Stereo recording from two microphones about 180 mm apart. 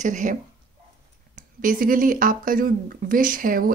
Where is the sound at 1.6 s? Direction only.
50° right (ahead or behind).